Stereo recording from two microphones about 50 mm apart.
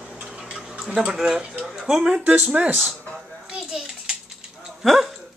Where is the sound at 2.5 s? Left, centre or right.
Right.